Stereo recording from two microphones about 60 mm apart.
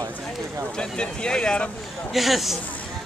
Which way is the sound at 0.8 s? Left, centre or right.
Centre.